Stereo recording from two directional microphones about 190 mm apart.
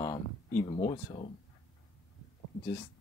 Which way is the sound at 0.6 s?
30° left (ahead or behind).